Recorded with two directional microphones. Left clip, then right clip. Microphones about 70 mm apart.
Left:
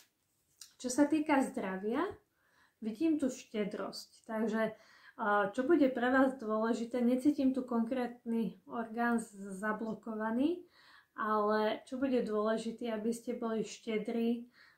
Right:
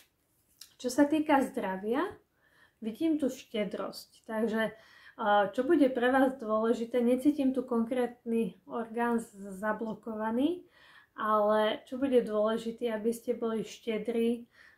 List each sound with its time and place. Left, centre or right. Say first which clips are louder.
0.9 s speech: right 4 dB; right